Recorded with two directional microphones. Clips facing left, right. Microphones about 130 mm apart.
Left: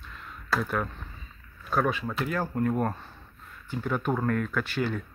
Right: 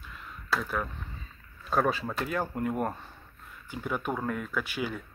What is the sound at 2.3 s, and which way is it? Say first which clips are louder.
Speech: left 4 dB; 15° right (ahead or behind).